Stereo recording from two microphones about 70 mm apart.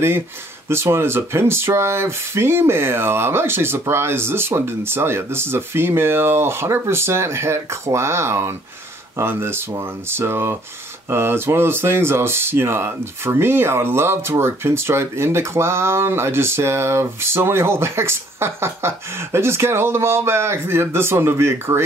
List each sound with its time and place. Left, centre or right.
0.7 s speech: right